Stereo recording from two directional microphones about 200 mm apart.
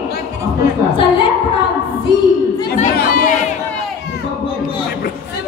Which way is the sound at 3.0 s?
45° left (ahead or behind).